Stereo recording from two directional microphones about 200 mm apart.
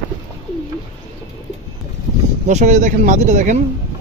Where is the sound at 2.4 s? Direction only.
35° right (ahead or behind).